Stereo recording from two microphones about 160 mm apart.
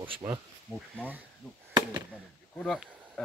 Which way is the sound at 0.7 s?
Centre (ahead or behind).